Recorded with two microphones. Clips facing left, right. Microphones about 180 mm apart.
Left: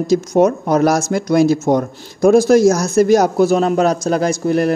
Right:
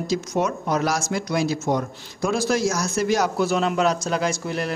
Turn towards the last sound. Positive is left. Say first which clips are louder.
# left 9 dB
turn(degrees=45)  # may be behind; listen again after turning